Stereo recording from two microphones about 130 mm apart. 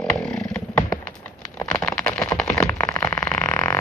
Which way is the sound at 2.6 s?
15° left (ahead or behind).